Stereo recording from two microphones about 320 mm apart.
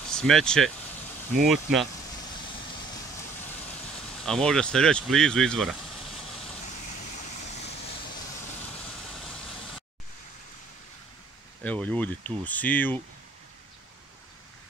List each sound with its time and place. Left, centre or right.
0.1 s speech: centre
4.3 s speech: centre
7.0 s vehicle: left
11.6 s speech: centre